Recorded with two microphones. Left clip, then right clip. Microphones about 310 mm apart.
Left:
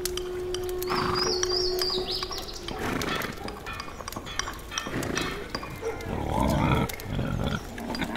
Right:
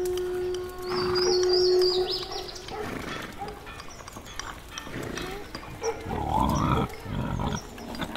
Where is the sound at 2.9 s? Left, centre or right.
Left.